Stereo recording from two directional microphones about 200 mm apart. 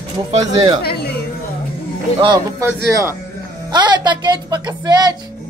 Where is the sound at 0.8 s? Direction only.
55° left (ahead or behind).